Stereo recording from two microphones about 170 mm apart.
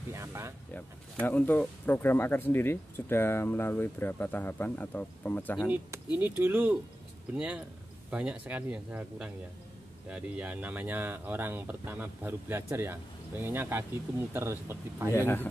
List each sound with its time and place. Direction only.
0.1 s a sound: 15° right (ahead or behind)
1.2 s speech: 10° left (ahead or behind)
5.7 s speech: 10° right (ahead or behind)
15.1 s speech: 10° left (ahead or behind)